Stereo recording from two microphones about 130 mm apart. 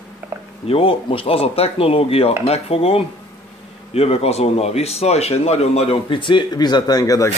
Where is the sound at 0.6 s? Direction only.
45° left (ahead or behind).